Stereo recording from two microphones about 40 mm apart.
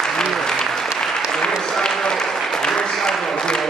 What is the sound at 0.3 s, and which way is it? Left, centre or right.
Applause, centre.